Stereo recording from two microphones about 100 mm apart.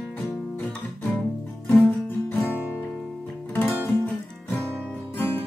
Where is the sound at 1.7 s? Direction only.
20° left (ahead or behind).